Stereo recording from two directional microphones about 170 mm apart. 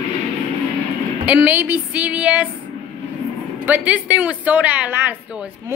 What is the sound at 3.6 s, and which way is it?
Speech, 10° right (ahead or behind).